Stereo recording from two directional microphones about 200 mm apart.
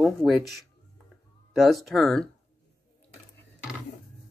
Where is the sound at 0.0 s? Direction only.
Centre (ahead or behind).